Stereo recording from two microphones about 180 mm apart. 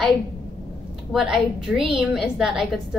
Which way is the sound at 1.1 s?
Centre (ahead or behind).